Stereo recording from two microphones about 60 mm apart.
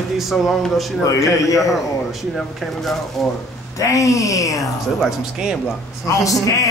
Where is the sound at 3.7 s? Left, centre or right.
Left.